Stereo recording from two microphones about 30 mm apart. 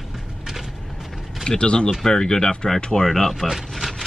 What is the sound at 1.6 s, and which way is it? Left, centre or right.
Speech, left.